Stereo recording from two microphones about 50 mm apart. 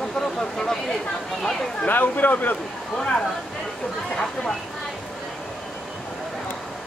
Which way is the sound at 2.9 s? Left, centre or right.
Centre.